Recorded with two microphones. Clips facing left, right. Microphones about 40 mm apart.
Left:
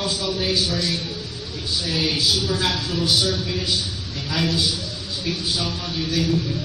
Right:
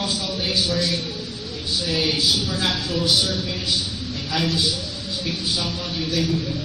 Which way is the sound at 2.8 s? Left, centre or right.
Right.